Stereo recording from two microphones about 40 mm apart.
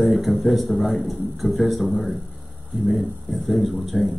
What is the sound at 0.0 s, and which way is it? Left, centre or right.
Speech, centre.